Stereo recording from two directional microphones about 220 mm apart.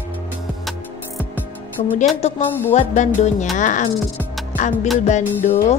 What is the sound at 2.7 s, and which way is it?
Music, 30° left (ahead or behind).